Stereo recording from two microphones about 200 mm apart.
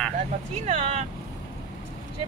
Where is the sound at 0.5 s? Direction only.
35° right (ahead or behind).